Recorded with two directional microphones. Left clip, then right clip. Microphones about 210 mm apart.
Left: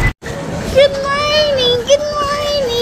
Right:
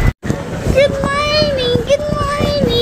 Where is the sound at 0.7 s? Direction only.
5° right (ahead or behind).